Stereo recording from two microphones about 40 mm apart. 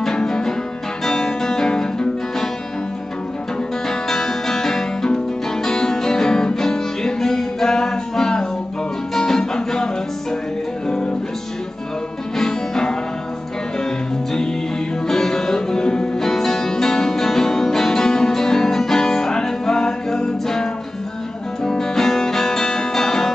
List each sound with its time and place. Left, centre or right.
0.0 s music: centre
4.1 s music: centre
12.4 s music: centre
15.0 s music: centre
21.6 s music: centre